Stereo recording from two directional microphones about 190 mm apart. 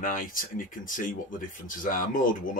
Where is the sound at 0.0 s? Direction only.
45° left (ahead or behind).